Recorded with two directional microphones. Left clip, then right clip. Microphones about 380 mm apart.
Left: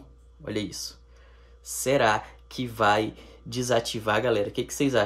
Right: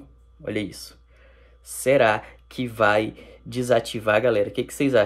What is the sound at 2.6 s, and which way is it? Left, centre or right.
Speech, left.